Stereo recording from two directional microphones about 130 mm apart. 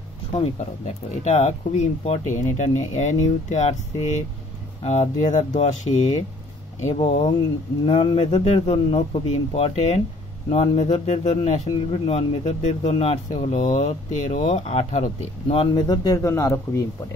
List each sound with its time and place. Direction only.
0.4 s a man's voice: 60° left (ahead or behind)
15.4 s speech: 45° left (ahead or behind)
15.9 s speech: 30° left (ahead or behind)